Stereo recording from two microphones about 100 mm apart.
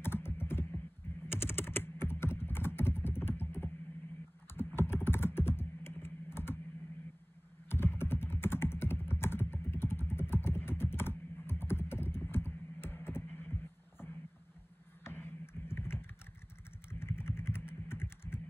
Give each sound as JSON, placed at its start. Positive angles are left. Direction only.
{"t": 0.0, "sound": "computer keyboard", "side_deg": 20}
{"t": 1.2, "sound": "typing", "side_deg": 25}
{"t": 4.7, "sound": "computer keyboard", "side_deg": 25}
{"t": 7.7, "sound": "computer keyboard", "side_deg": 25}
{"t": 17.0, "sound": "typing", "side_deg": 25}